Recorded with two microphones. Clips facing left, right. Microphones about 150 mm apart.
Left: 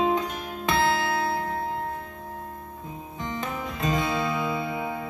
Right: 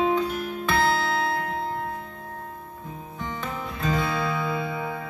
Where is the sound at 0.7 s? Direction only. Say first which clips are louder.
Even; 20° left (ahead or behind).